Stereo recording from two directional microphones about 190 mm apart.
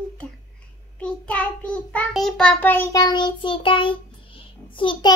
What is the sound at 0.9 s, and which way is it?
Child singing, 5° left (ahead or behind).